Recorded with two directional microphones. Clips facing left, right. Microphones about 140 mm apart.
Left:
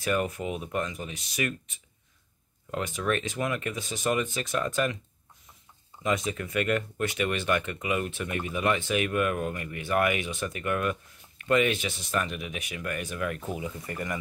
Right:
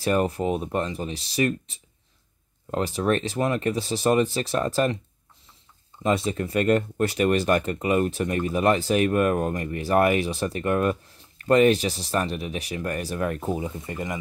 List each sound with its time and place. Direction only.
0.0 s speech: 35° right (ahead or behind)
6.0 s speech: 30° right (ahead or behind)
13.8 s speech: 20° right (ahead or behind)